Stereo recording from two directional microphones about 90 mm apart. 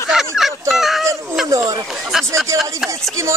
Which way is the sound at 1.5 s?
40° right (ahead or behind).